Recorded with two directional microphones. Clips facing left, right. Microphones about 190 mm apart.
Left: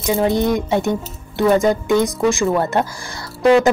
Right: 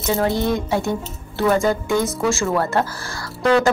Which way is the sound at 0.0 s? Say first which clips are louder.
Left 3 dB; 15° left (ahead or behind).